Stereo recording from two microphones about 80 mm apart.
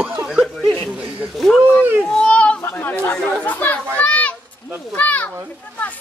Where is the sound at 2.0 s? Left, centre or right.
Centre.